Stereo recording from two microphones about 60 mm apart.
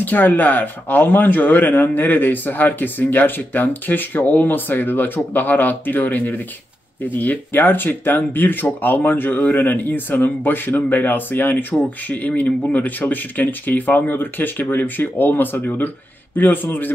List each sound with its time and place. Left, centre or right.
0.0 s speech: left